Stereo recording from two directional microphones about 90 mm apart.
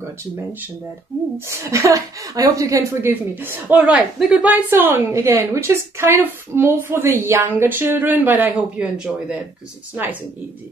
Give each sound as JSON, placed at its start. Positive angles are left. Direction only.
{"t": 0.2, "sound": "speech", "side_deg": -20}
{"t": 1.5, "sound": "speech", "side_deg": -35}